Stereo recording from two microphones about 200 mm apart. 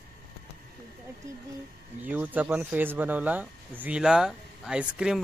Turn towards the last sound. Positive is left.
turn(degrees=-5)  # may be behind; listen again after turning